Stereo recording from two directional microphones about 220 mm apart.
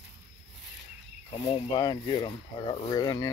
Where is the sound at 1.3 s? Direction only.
20° left (ahead or behind).